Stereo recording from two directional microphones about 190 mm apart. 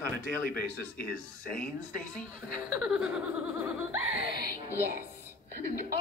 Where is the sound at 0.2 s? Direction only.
50° left (ahead or behind).